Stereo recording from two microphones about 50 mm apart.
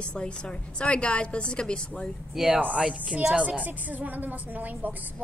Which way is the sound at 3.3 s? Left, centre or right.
Right.